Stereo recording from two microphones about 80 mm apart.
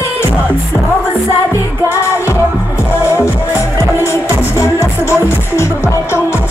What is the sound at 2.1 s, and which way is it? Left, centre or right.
Music, left.